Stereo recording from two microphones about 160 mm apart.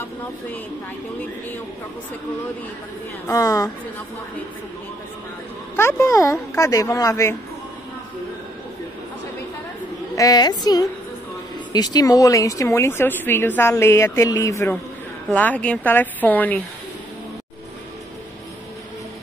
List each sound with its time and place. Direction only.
3.3 s speech: 20° left (ahead or behind)
5.8 s speech: 15° left (ahead or behind)
10.1 s a woman's voice: 25° left (ahead or behind)